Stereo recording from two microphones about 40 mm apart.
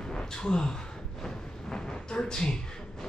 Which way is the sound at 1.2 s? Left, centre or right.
Centre.